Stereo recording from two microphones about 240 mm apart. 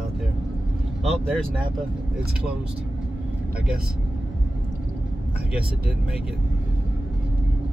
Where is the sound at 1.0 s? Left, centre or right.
Centre.